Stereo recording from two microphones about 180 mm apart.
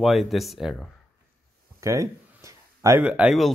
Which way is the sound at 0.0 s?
Centre (ahead or behind).